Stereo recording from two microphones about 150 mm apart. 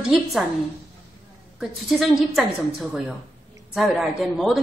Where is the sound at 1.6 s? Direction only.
Centre (ahead or behind).